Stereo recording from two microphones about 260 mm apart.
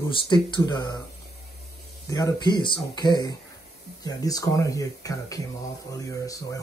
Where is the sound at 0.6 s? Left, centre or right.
Centre.